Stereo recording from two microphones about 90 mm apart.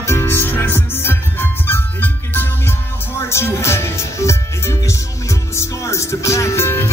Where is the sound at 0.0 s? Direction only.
25° left (ahead or behind).